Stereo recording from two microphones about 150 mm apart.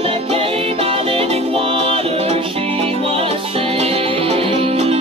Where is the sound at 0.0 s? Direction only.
40° right (ahead or behind).